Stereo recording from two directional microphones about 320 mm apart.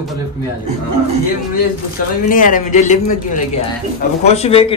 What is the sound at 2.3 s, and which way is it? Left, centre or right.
A man's voice, left.